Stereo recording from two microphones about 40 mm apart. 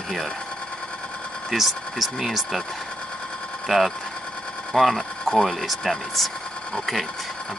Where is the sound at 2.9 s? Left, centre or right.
Left.